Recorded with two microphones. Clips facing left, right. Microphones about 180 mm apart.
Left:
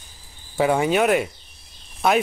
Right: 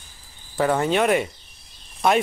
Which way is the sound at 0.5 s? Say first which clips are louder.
Left 1 dB; 10° left (ahead or behind).